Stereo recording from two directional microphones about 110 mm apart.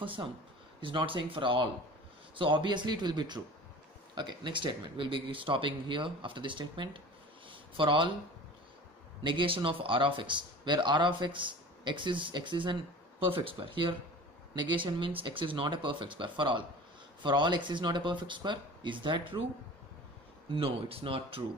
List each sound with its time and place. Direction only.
0.0 s speech: 50° right (ahead or behind)
7.4 s a sound: 50° right (ahead or behind)
9.2 s speech: 50° right (ahead or behind)
20.4 s speech: 55° right (ahead or behind)